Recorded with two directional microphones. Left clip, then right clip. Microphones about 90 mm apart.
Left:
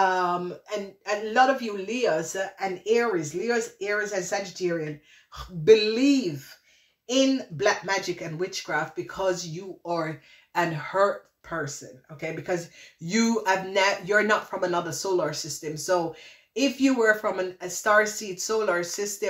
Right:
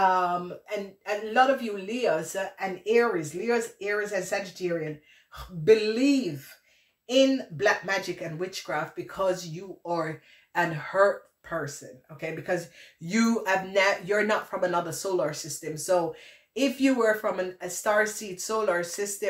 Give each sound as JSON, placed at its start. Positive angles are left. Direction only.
{"t": 0.0, "sound": "speech", "side_deg": 25}
{"t": 16.5, "sound": "speech", "side_deg": 20}